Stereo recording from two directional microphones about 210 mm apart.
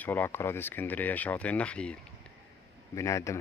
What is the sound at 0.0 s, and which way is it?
Speech, 10° left (ahead or behind).